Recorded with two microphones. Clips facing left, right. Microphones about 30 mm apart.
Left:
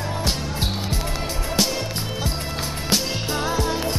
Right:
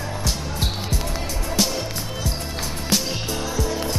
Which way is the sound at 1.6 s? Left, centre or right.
Centre.